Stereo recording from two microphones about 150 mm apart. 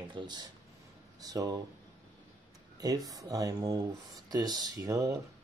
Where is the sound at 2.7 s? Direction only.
25° right (ahead or behind).